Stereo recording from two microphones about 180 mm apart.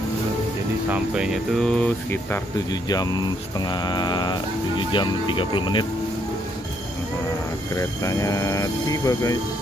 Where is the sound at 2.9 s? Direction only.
20° left (ahead or behind).